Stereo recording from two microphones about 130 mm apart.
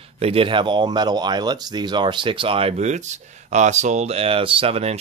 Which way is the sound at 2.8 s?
65° right (ahead or behind).